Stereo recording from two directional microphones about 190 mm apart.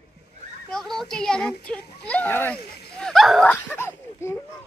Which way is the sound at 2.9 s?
5° left (ahead or behind).